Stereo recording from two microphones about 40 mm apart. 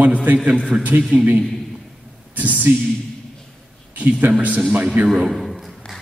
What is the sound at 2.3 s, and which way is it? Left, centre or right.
Speech, right.